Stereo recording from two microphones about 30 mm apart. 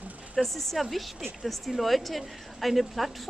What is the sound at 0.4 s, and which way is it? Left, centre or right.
A woman's voice, centre.